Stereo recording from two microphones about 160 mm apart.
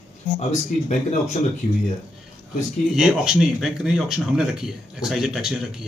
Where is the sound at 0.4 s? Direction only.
45° left (ahead or behind).